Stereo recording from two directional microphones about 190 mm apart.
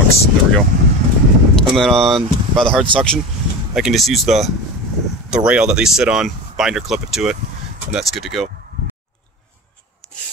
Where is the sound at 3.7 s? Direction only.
Centre (ahead or behind).